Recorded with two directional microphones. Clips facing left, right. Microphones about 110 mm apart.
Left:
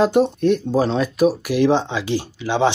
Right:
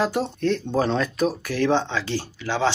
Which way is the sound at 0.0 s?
20° left (ahead or behind).